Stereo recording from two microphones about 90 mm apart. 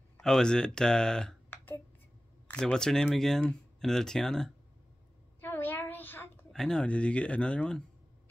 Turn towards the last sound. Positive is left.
turn(degrees=10)  # may be behind; listen again after turning